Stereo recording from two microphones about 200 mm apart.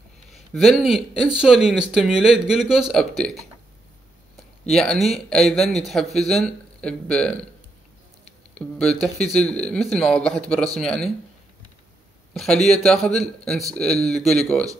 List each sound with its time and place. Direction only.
0.3 s speech: centre (ahead or behind)
4.6 s speech: centre (ahead or behind)
8.5 s speech: 5° left (ahead or behind)
12.4 s speech: centre (ahead or behind)